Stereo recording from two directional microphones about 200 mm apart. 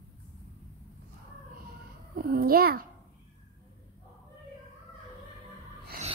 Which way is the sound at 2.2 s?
45° right (ahead or behind).